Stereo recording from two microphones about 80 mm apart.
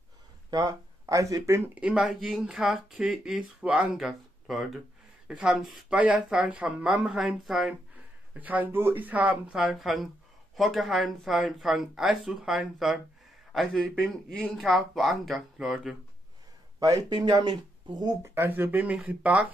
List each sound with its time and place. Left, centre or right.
0.5 s speech: right
1.8 s speech: centre
8.4 s speech: right
9.6 s a man's voice: centre
17.1 s speech: right
18.2 s speech: right